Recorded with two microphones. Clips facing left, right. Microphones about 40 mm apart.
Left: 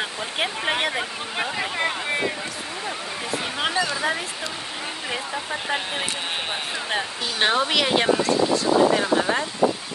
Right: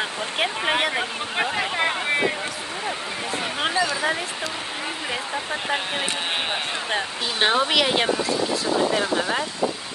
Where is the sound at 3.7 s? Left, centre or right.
Right.